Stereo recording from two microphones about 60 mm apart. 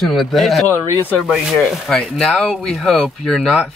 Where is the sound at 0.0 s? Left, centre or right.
Centre.